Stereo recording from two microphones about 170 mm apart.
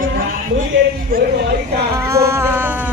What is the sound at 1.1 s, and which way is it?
Speech, 60° right (ahead or behind).